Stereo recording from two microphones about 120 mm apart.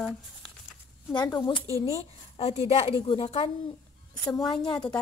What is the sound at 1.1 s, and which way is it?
Speech, 35° left (ahead or behind).